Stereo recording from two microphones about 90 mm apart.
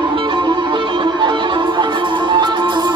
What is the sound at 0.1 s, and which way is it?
Music, 60° right (ahead or behind).